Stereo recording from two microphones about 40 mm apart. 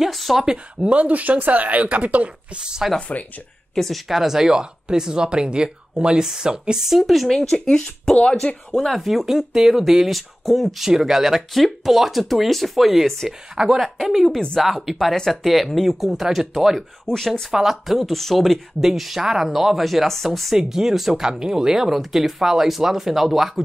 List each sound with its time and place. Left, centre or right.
0.0 s a sound: centre
0.8 s speech: right
2.6 s speech: centre
3.1 s speech: left
3.7 s speech: centre
4.1 s speech: centre
6.8 s speech: centre
7.2 s speech: centre
9.0 s speech: centre
13.6 s speech: centre
13.9 s speech: centre
17.0 s speech: centre
17.5 s speech: centre
20.5 s speech: centre